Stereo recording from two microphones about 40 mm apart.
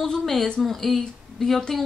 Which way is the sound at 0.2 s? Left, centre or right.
Centre.